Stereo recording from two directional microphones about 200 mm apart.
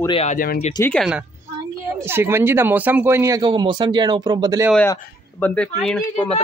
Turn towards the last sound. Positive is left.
turn(degrees=5)  # may be behind; listen again after turning